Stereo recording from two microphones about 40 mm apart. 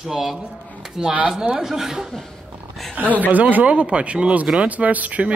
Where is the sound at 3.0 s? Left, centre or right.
Right.